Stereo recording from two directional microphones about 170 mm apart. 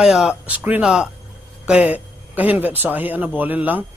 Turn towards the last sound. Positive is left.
turn(degrees=-10)  # may be behind; listen again after turning